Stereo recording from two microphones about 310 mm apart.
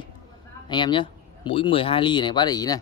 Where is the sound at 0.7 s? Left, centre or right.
Centre.